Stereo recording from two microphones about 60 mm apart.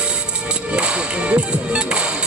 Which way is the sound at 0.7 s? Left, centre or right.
Centre.